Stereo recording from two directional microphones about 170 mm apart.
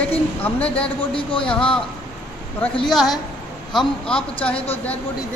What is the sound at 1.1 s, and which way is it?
Speech, 30° left (ahead or behind).